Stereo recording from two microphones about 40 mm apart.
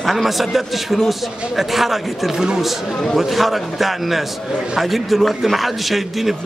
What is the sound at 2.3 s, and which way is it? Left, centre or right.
Speech, centre.